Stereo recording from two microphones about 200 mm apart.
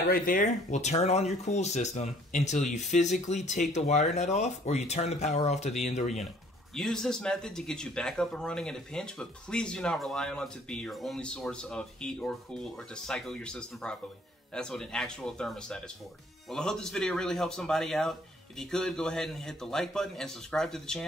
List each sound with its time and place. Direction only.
0.1 s speech: 40° left (ahead or behind)
6.7 s speech: 5° left (ahead or behind)